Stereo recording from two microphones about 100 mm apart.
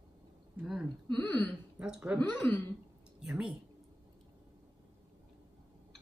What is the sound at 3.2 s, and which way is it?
Speech, 5° right (ahead or behind).